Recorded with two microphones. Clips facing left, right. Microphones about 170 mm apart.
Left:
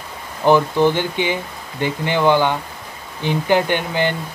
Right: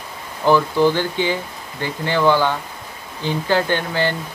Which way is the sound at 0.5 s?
20° left (ahead or behind).